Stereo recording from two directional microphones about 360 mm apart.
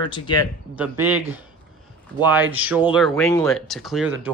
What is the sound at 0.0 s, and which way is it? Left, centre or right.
Speech, centre.